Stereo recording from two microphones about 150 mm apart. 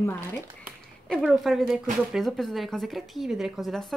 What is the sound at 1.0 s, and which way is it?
A woman's voice, centre (ahead or behind).